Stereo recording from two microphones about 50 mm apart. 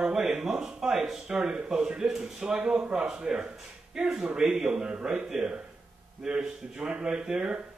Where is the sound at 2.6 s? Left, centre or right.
Right.